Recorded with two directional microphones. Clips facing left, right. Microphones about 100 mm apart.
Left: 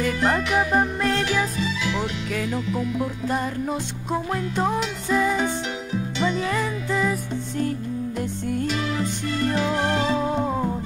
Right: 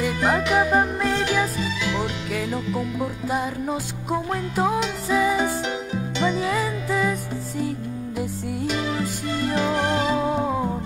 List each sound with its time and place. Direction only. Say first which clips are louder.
0.0 s music: even; 10° right (ahead or behind)
9.6 s music: right 2 dB; 15° right (ahead or behind)